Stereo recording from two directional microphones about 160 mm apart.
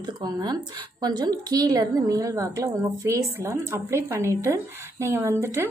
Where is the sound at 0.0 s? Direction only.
25° right (ahead or behind).